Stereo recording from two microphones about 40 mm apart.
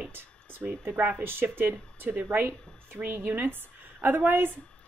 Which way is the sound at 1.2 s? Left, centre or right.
Right.